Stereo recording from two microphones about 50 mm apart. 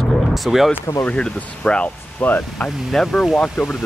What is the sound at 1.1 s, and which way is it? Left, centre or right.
Speech, left.